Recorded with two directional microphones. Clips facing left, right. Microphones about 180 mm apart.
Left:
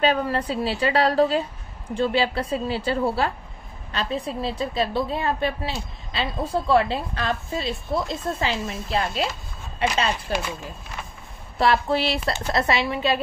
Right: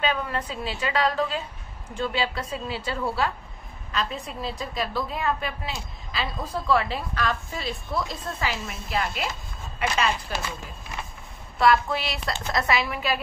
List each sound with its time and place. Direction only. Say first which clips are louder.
0.0 s a woman's voice: left 6 dB; 35° left (ahead or behind)
11.5 s a woman's voice: left 1 dB; 30° left (ahead or behind)